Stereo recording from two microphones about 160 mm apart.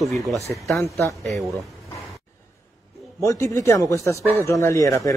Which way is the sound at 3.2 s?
20° left (ahead or behind).